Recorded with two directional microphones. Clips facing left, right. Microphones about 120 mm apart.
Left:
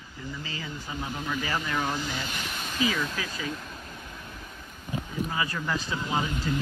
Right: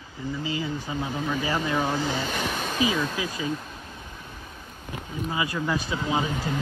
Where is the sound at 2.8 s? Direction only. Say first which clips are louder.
Right 2 dB; 20° right (ahead or behind).